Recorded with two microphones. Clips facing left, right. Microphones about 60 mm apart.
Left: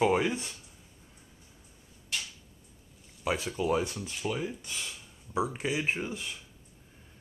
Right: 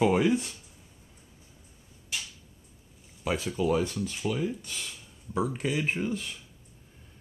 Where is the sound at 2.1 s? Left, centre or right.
Centre.